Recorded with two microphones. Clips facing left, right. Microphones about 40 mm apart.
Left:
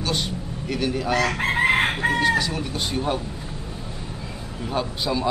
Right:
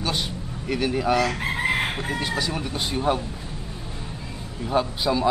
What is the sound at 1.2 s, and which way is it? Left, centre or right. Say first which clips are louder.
Chicken: left 4 dB; left.